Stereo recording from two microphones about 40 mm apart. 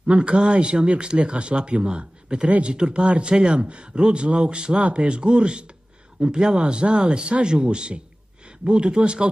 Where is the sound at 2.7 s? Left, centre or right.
Right.